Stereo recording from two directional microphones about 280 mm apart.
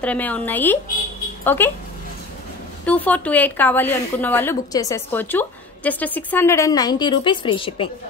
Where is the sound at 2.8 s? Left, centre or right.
Centre.